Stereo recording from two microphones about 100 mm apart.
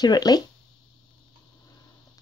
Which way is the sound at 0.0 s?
40° left (ahead or behind).